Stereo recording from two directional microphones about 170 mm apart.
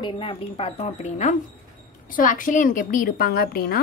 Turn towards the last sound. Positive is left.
turn(degrees=60)  # may be behind; listen again after turning